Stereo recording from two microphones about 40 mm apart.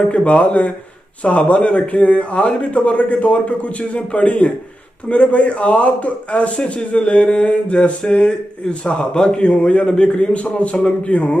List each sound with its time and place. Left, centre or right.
0.1 s speech: left